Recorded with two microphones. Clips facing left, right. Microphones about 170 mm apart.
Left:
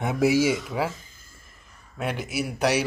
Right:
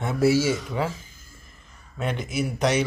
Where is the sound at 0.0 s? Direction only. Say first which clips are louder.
Even; 15° left (ahead or behind).